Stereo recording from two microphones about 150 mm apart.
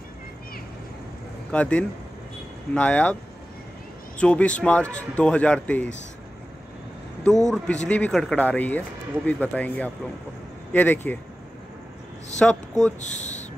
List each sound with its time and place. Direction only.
1.5 s speech: 10° left (ahead or behind)
4.2 s speech: 10° left (ahead or behind)
7.5 s speech: 5° left (ahead or behind)
12.4 s speech: 5° left (ahead or behind)
13.0 s speech: 55° left (ahead or behind)